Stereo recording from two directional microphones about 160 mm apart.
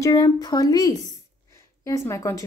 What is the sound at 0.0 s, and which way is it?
Speech, 20° left (ahead or behind).